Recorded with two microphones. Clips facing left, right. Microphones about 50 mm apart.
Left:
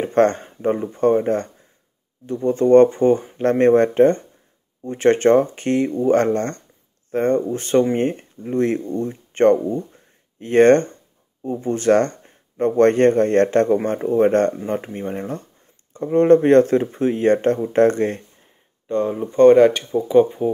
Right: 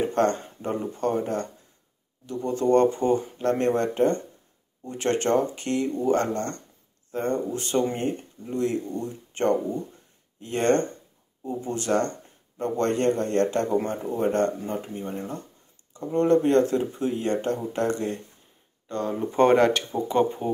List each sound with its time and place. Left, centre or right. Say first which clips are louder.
0.0 s speech: left 6 dB; left
18.9 s speech: left 8 dB; left
19.3 s speech: left 8 dB; centre